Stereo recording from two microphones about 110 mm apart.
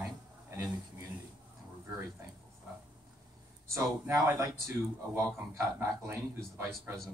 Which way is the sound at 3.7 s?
25° right (ahead or behind).